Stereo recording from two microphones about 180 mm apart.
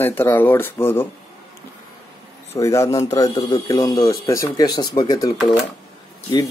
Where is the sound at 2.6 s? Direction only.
15° left (ahead or behind).